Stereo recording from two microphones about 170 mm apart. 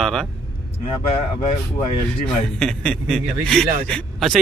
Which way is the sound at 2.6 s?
5° left (ahead or behind).